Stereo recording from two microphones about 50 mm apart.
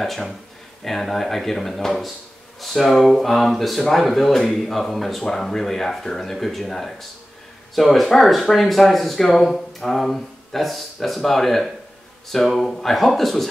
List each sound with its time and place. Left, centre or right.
0.0 s speech: centre